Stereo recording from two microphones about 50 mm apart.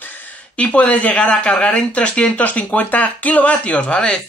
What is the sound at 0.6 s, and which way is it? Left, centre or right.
Speech, left.